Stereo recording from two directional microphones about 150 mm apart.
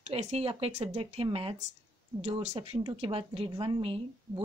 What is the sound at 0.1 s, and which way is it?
A woman's voice, 45° right (ahead or behind).